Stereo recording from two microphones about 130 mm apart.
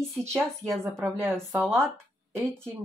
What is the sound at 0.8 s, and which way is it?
Speech, 20° right (ahead or behind).